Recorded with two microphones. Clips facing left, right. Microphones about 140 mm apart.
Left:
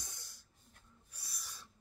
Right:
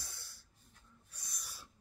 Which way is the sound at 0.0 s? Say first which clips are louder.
Even; 15° left (ahead or behind).